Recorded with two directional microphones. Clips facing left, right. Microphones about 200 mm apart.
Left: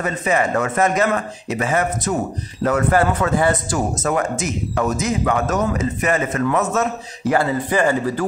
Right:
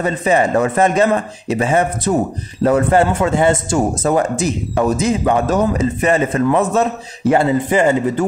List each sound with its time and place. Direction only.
0.0 s speech: 30° right (ahead or behind)